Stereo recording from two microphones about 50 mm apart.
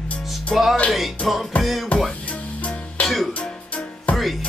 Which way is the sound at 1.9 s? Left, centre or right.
Left.